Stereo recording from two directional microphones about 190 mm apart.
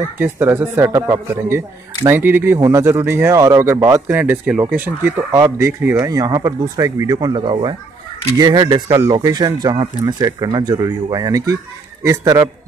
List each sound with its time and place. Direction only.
0.2 s speech: 10° right (ahead or behind)